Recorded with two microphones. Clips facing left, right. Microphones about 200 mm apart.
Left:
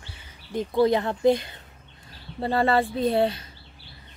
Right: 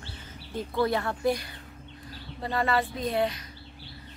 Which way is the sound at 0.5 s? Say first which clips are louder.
Left 6 dB; 20° left (ahead or behind).